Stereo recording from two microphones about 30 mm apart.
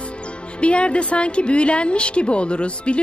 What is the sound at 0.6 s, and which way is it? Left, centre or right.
A woman's voice, left.